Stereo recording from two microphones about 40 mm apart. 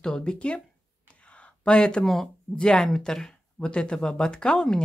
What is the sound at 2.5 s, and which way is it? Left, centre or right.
Speech, left.